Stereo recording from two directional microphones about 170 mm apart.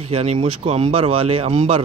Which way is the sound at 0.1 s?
40° right (ahead or behind).